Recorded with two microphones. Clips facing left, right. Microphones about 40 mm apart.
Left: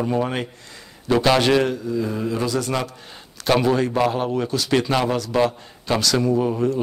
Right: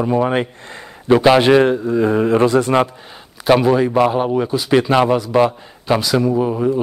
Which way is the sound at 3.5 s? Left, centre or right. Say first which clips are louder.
Right 5 dB; centre.